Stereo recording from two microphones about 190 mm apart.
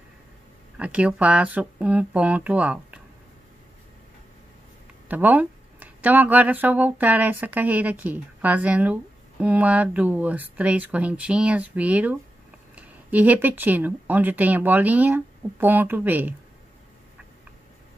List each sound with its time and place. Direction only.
0.7 s speech: 5° right (ahead or behind)
5.0 s speech: 10° right (ahead or behind)